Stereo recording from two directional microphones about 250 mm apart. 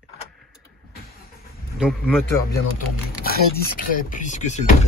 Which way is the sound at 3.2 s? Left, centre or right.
Left.